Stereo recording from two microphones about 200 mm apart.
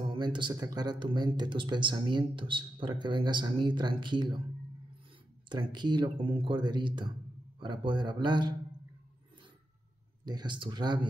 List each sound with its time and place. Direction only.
0.1 s speech: 25° right (ahead or behind)
5.5 s speech: 20° right (ahead or behind)
10.2 s speech: 20° right (ahead or behind)